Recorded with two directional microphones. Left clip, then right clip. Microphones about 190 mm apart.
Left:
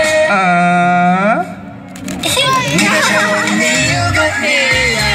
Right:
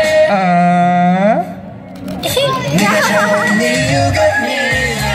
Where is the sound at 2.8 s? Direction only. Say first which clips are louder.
Right 3 dB; 35° right (ahead or behind).